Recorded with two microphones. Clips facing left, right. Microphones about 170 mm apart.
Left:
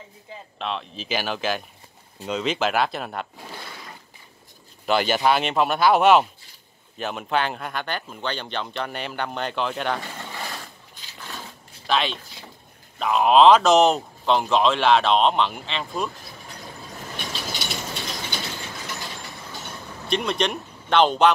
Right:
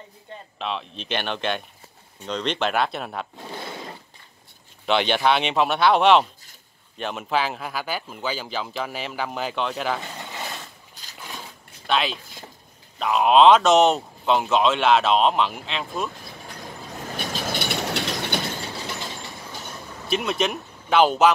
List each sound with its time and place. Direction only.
0.3 s speech: centre (ahead or behind)
3.4 s a sound: 25° right (ahead or behind)
4.8 s speech: 5° left (ahead or behind)
11.9 s speech: centre (ahead or behind)
17.3 s train: 55° right (ahead or behind)
20.1 s speech: 5° right (ahead or behind)